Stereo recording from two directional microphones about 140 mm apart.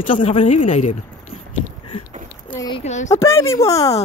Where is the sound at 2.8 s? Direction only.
55° left (ahead or behind).